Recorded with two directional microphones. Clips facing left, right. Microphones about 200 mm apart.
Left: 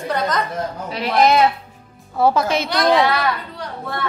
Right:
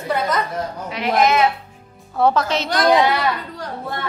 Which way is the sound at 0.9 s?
35° left (ahead or behind).